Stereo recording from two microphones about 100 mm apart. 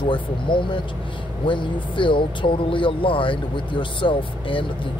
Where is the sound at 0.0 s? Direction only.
55° left (ahead or behind).